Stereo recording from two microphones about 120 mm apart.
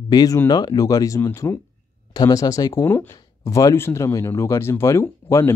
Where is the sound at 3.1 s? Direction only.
30° left (ahead or behind).